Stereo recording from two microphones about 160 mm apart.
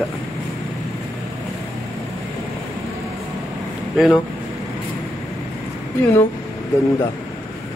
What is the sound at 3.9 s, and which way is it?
Speech, centre (ahead or behind).